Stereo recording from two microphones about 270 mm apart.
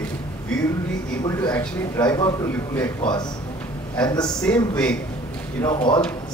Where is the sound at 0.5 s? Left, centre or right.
Centre.